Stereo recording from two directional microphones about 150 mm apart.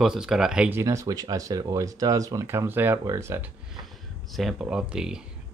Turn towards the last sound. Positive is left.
turn(degrees=-5)  # may be behind; listen again after turning